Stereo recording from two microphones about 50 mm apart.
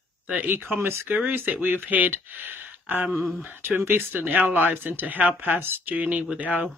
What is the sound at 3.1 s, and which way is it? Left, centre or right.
Speech, centre.